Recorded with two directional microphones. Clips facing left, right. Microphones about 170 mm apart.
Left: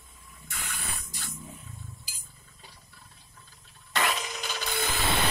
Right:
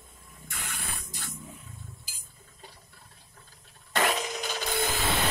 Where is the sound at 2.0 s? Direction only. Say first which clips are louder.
Even; 50° right (ahead or behind).